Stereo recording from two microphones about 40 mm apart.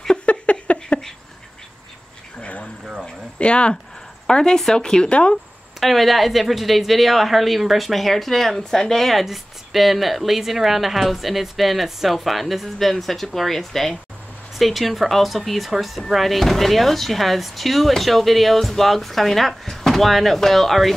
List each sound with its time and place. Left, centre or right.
0.1 s a sound: left
3.3 s a woman's voice: left
5.8 s speech: centre